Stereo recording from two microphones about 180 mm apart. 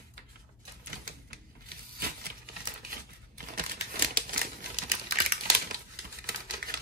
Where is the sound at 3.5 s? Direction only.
50° right (ahead or behind).